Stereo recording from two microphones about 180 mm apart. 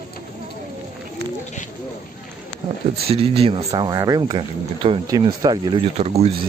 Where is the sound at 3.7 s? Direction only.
20° right (ahead or behind).